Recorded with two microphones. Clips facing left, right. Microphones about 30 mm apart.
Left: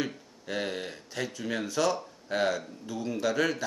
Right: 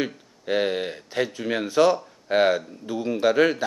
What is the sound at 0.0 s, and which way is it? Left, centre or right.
Speech, right.